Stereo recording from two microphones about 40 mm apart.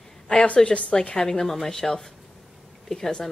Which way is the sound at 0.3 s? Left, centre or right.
Left.